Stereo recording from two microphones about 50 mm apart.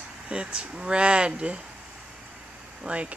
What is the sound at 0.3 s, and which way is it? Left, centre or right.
Speech, right.